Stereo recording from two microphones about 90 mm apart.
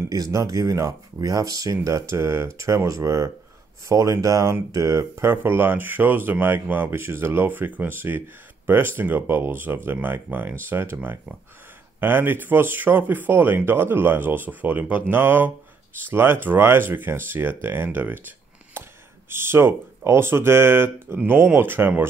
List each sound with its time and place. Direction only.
0.1 s speech: 45° right (ahead or behind); by 22.0 s 25° right (ahead or behind)